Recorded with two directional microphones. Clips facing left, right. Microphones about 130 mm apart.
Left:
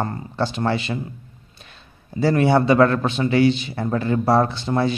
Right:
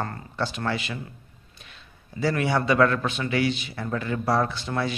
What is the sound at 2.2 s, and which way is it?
A man's voice, 30° left (ahead or behind).